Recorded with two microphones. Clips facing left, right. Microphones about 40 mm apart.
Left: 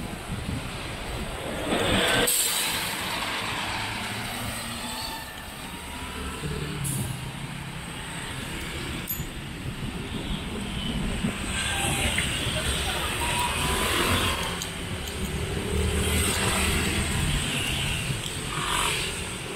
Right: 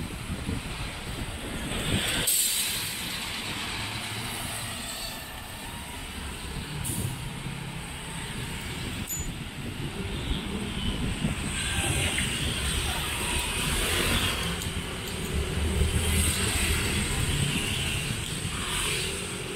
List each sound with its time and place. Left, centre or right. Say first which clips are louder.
1.9 s vehicle: left 5 dB; left
12.0 s vehicle: left 2 dB; centre
12.4 s vehicle: left 3 dB; left
12.9 s vehicle: left 3 dB; centre
13.5 s vehicle: left 3 dB; centre
15.7 s vehicle: left 4 dB; centre